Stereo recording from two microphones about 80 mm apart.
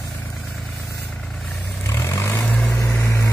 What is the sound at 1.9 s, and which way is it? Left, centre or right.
Vehicle, left.